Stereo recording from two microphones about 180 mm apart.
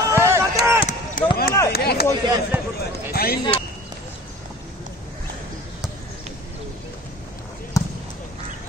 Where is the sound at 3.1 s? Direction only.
60° left (ahead or behind).